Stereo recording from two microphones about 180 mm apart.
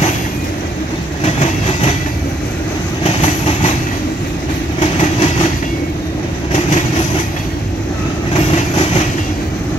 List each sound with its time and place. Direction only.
1.2 s train: 40° left (ahead or behind)
3.0 s train: 35° left (ahead or behind)
4.7 s train: 35° left (ahead or behind)
6.5 s train: 40° left (ahead or behind)
8.4 s train: 35° left (ahead or behind)